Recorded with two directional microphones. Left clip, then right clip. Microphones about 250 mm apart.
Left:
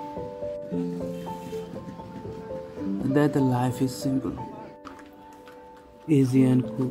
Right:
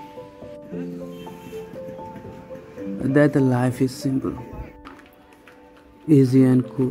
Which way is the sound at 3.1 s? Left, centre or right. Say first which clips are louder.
Right 5 dB; centre.